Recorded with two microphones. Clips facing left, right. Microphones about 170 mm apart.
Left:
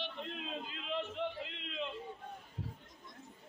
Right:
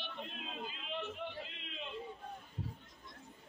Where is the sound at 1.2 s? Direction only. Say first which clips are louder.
Left 6 dB; 75° left (ahead or behind).